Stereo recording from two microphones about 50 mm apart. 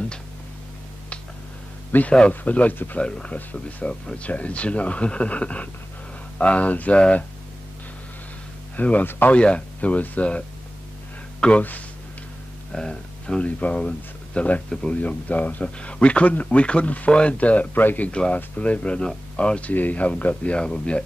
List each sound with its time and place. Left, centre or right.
1.9 s a man's voice: left
2.1 s speech: left
8.7 s speech: left
9.3 s speech: left
11.4 s speech: centre
12.7 s speech: centre
13.4 s speech: left
14.7 s speech: centre
15.0 s speech: left
19.7 s speech: left